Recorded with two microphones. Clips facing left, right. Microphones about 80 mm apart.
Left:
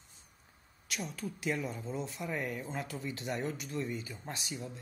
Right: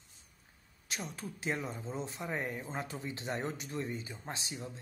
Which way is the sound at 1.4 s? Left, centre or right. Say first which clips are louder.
Left 1 dB; right.